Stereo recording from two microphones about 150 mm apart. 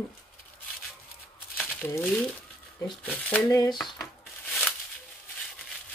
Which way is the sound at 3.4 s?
25° left (ahead or behind).